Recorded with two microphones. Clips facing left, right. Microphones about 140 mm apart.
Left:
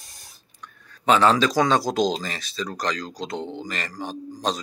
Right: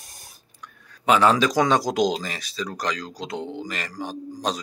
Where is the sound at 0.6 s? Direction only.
10° right (ahead or behind).